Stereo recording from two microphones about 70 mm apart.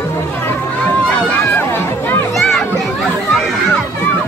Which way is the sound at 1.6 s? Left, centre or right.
Left.